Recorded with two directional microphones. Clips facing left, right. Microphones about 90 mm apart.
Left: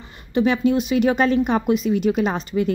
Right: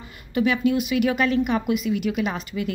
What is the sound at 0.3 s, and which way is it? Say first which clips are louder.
Speech: left 3 dB; 30° left (ahead or behind).